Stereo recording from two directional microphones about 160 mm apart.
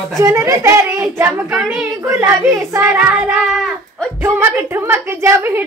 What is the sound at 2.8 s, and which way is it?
Child singing, 5° right (ahead or behind).